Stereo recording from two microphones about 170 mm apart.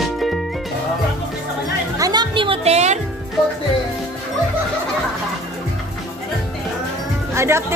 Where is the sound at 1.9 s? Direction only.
20° right (ahead or behind); by 3.0 s 40° right (ahead or behind).